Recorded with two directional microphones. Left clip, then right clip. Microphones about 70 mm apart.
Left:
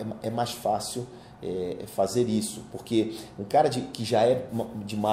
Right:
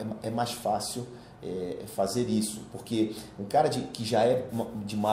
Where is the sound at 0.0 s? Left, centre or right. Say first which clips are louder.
Left 2 dB; centre.